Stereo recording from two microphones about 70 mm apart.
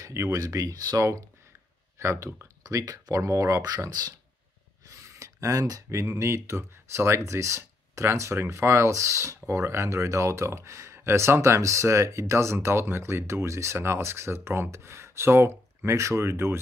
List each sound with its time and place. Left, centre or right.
0.0 s speech: right
2.0 s speech: right
2.6 s speech: right
3.6 s speech: right
4.8 s speech: right